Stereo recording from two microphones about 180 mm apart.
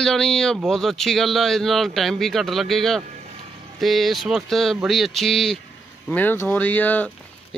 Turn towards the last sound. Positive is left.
turn(degrees=10)  # may be behind; listen again after turning